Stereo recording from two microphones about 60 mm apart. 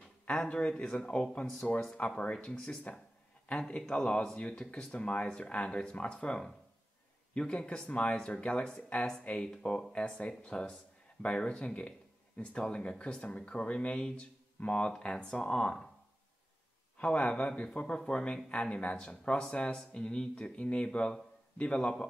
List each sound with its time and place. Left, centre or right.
0.3 s speech: centre
17.0 s speech: centre